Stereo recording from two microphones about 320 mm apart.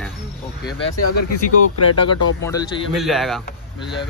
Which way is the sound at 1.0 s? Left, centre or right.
Left.